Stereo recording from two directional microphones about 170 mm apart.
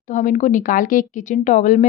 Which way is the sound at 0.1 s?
50° left (ahead or behind).